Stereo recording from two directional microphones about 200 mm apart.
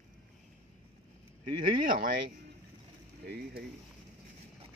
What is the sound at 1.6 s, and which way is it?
Speech, 40° right (ahead or behind).